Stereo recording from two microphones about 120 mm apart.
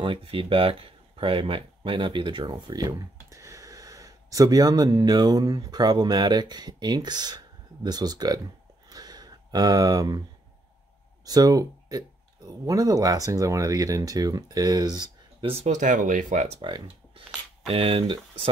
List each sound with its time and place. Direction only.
0.0 s speech: 50° right (ahead or behind)
8.8 s a sound: 35° right (ahead or behind)
11.2 s speech: 30° right (ahead or behind)
15.4 s speech: 55° right (ahead or behind)
15.7 s speech: 90° right
16.6 s speech: 45° right (ahead or behind)